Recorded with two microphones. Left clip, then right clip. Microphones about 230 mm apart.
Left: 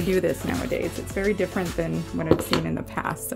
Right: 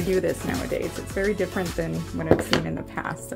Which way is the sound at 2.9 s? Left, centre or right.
Left.